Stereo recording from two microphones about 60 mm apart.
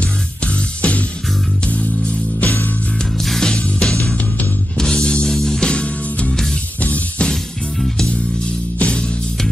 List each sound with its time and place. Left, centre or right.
0.4 s music: left
3.2 s music: centre
4.1 s music: left
4.7 s music: centre
8.7 s music: left